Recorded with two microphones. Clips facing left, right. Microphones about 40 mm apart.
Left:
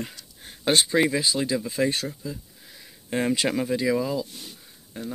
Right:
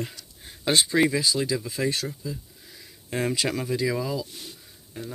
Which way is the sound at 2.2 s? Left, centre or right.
Centre.